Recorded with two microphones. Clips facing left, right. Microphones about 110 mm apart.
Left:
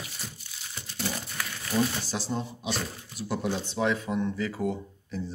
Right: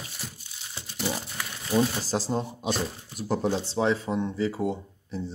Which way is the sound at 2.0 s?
40° right (ahead or behind).